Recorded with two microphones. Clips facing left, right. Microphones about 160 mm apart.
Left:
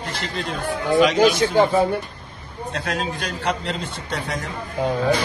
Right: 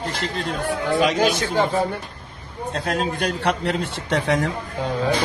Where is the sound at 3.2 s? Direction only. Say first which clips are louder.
Right 3 dB; 65° right (ahead or behind).